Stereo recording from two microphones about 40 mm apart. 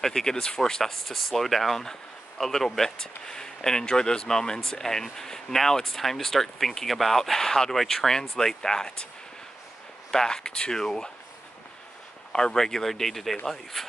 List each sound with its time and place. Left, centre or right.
0.0 s speech: centre
10.1 s speech: centre
12.3 s speech: centre